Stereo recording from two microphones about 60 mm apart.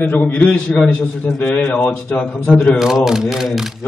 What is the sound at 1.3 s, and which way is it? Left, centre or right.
A man's voice, left.